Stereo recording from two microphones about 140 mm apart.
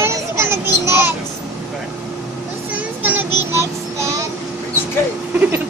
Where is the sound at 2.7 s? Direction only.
10° right (ahead or behind).